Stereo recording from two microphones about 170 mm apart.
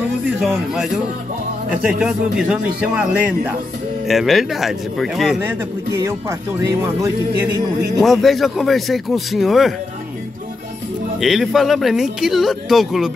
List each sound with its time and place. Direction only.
0.3 s speech: 5° right (ahead or behind)
5.9 s speech: 15° right (ahead or behind)
8.0 s speech: centre (ahead or behind)
11.1 s speech: centre (ahead or behind)